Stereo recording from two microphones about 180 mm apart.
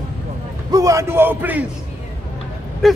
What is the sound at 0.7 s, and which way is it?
Speech, 15° right (ahead or behind).